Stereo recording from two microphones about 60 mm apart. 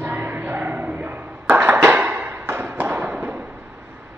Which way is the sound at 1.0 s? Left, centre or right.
Right.